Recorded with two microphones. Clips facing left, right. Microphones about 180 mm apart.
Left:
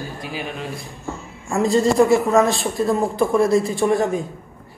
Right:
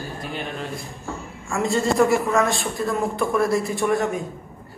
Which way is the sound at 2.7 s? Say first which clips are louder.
Left 6 dB; 20° left (ahead or behind).